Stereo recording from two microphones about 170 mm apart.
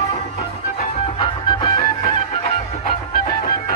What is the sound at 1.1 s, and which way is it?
Music, 25° left (ahead or behind).